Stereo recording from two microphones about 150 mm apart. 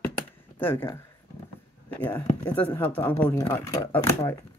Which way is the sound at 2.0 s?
10° left (ahead or behind).